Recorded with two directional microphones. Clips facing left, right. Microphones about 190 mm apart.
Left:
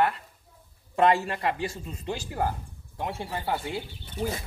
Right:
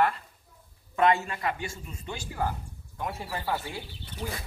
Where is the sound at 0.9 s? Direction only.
35° left (ahead or behind).